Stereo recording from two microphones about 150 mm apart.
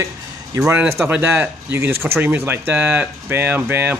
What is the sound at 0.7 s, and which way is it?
Speech, 15° right (ahead or behind).